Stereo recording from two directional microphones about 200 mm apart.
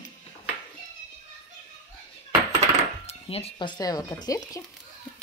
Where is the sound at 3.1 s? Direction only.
30° left (ahead or behind).